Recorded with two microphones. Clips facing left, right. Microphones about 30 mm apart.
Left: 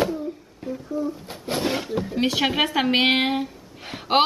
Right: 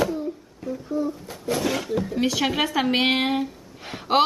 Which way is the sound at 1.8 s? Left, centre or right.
Centre.